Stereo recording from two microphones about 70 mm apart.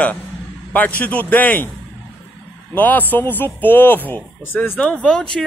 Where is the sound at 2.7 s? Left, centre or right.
Left.